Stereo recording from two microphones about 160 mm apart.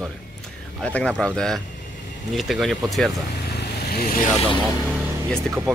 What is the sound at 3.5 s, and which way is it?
Vehicle, 70° left (ahead or behind).